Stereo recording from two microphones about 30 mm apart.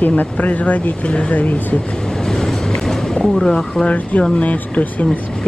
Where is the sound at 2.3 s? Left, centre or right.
Centre.